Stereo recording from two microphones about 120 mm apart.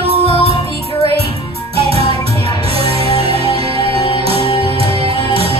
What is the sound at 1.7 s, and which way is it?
Music, 55° right (ahead or behind).